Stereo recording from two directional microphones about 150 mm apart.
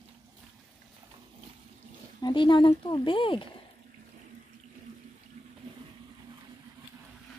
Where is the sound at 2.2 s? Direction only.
30° left (ahead or behind).